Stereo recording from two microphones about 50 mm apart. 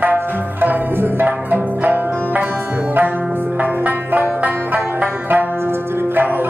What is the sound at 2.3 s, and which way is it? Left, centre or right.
Music, right.